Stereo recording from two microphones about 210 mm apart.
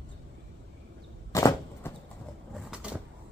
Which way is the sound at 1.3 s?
15° left (ahead or behind).